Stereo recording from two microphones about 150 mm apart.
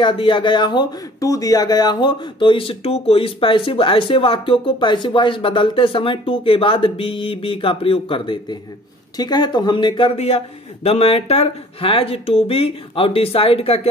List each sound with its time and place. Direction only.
0.0 s speech: 35° left (ahead or behind)